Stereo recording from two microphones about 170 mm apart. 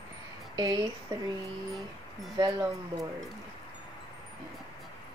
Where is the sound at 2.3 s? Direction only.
20° right (ahead or behind).